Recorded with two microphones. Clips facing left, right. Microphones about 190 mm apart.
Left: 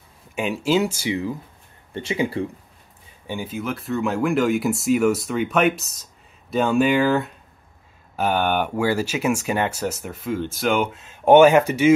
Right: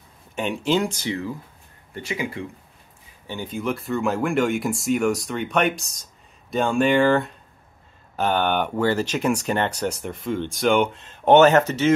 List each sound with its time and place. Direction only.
0.4 s speech: 5° left (ahead or behind)
2.0 s speech: 30° left (ahead or behind)
3.3 s speech: 5° left (ahead or behind)